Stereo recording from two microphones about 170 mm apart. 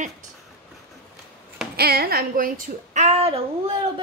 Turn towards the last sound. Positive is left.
turn(degrees=-35)  # may be behind; listen again after turning